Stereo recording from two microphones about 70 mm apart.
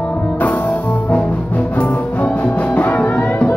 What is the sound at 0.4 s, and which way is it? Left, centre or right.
Music, left.